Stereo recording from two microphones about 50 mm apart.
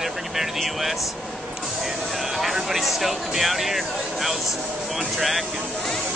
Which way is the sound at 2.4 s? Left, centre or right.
Centre.